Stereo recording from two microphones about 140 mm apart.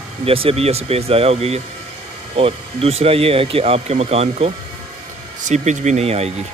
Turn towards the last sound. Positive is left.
turn(degrees=-50)  # may be behind; listen again after turning